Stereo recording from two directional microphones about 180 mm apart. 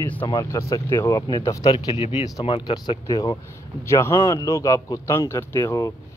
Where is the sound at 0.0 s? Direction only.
10° left (ahead or behind).